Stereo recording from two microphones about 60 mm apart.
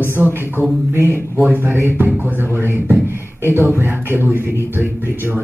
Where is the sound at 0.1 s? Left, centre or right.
Right.